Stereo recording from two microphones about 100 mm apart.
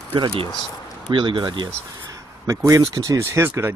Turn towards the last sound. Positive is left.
turn(degrees=-25)  # may be behind; listen again after turning